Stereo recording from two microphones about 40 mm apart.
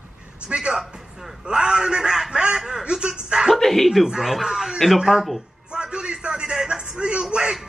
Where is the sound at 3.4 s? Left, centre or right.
Centre.